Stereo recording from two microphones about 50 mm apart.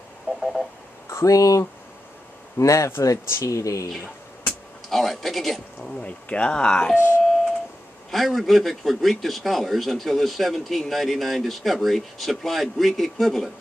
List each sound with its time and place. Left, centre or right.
0.4 s telephone dialing: centre
1.1 s speech: left
2.6 s speech: left
3.0 s speech: left
4.8 s speech: centre
5.8 s speech: left
8.1 s a man's voice: centre